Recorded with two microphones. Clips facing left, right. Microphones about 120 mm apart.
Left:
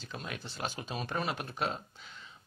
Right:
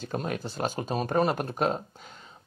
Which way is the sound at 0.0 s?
45° right (ahead or behind).